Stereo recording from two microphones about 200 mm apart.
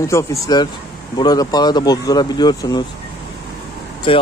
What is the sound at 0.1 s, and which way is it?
Speech, 20° left (ahead or behind).